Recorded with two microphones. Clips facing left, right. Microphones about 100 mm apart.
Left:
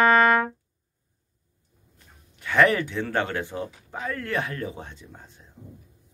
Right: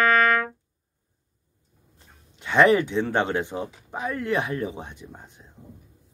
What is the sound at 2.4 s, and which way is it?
Speech, 20° right (ahead or behind).